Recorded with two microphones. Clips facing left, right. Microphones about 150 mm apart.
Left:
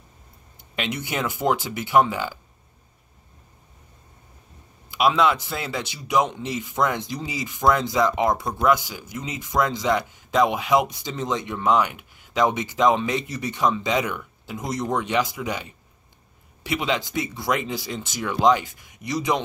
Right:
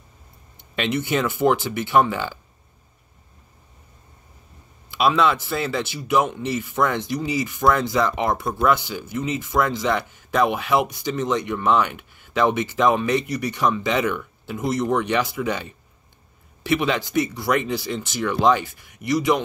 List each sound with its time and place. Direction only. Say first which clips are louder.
1.0 s speech: right 3 dB; 15° left (ahead or behind)
4.9 s speech: right 1 dB; 15° left (ahead or behind)